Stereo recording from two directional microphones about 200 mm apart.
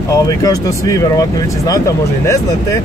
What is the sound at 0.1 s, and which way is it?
Speech, 15° left (ahead or behind).